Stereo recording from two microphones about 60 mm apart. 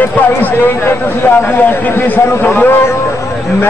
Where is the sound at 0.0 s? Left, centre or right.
Left.